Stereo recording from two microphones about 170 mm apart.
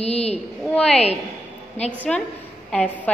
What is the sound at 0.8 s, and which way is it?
Speech, 5° left (ahead or behind).